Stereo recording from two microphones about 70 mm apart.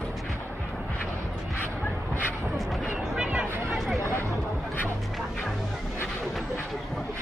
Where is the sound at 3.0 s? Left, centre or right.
Centre.